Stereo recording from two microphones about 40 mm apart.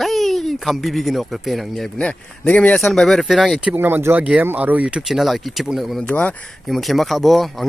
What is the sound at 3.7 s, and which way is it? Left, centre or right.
Speech, right.